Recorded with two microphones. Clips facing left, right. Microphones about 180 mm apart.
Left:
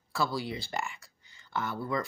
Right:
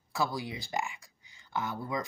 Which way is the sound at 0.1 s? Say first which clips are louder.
Left 1 dB; 15° right (ahead or behind).